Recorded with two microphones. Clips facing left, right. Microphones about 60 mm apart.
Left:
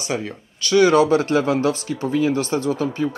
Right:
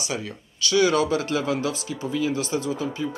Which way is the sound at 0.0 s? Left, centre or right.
Left.